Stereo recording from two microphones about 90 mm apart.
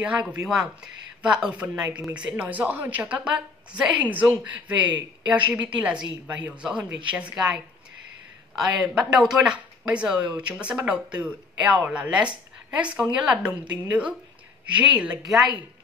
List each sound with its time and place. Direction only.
0.0 s speech: 15° right (ahead or behind)
8.9 s speech: 5° right (ahead or behind)
15.2 s speech: centre (ahead or behind)